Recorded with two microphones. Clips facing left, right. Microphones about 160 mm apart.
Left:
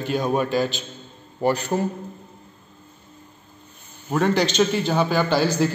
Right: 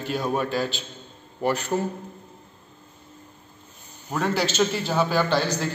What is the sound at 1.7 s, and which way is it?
Speech, 20° left (ahead or behind).